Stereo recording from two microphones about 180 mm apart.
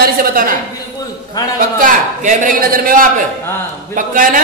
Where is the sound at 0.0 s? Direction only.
55° right (ahead or behind).